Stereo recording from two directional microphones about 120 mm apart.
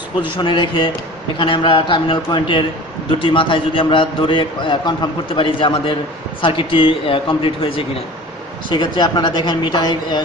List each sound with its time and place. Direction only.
0.4 s a man's voice: 40° left (ahead or behind)